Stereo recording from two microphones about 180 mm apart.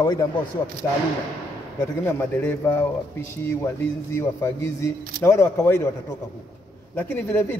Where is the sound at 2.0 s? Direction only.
15° left (ahead or behind).